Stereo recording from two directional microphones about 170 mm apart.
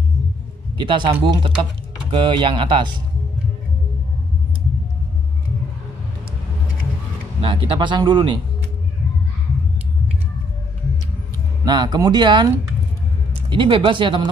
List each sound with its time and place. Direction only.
0.7 s speech: 25° right (ahead or behind)
7.4 s speech: 30° right (ahead or behind)
11.6 s speech: 25° right (ahead or behind)
13.5 s speech: 30° right (ahead or behind)